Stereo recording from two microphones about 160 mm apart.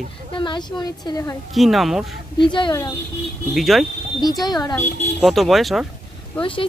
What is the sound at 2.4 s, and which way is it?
Speech, 30° left (ahead or behind).